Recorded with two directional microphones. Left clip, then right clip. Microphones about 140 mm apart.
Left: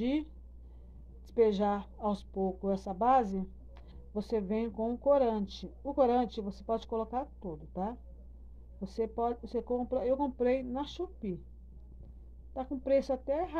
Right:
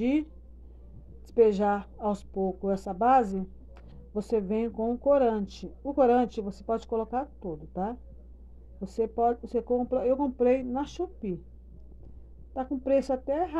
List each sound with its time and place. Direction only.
1.2 s a woman's voice: 10° right (ahead or behind)
12.5 s a woman's voice: 15° right (ahead or behind)